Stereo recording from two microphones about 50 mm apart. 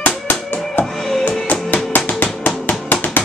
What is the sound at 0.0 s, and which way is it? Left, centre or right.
Music, left.